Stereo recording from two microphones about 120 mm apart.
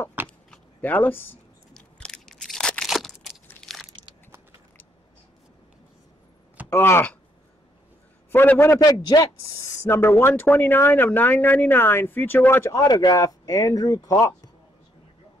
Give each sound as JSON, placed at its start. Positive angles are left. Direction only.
{"t": 0.2, "sound": "vehicle", "side_deg": -20}
{"t": 0.5, "sound": "a sound", "side_deg": 15}
{"t": 1.7, "sound": "crunch", "side_deg": 5}
{"t": 6.7, "sound": "speech", "side_deg": 20}
{"t": 8.3, "sound": "a man's voice", "side_deg": 15}
{"t": 9.0, "sound": "speech", "side_deg": 35}
{"t": 12.8, "sound": "speech", "side_deg": 35}